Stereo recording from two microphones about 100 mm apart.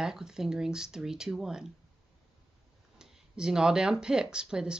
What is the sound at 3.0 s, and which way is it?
Speech, 5° right (ahead or behind).